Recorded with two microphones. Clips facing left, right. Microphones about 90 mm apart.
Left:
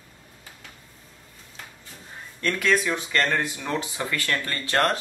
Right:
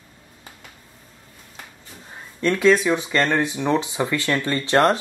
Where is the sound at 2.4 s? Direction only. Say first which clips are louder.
Right 6 dB; 20° right (ahead or behind).